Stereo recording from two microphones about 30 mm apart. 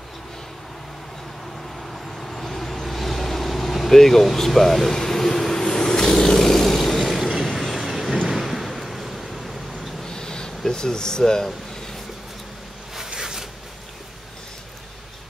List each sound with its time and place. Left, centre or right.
1.8 s vehicle: centre
7.5 s train: centre
8.3 s vehicle: centre
10.0 s a sound: left
10.7 s speech: left